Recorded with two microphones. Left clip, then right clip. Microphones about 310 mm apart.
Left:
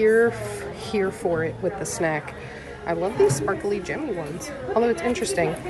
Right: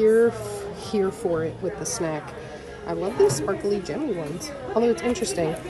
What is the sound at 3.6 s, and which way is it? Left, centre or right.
Speech, centre.